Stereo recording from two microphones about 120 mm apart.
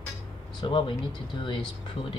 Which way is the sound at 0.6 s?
45° left (ahead or behind).